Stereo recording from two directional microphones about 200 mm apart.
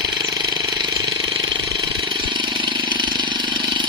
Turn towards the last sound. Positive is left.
turn(degrees=-20)  # may be behind; listen again after turning